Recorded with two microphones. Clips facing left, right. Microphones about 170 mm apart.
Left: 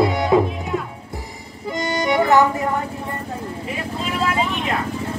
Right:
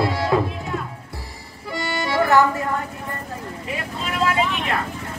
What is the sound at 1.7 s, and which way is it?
Accordion, 20° left (ahead or behind).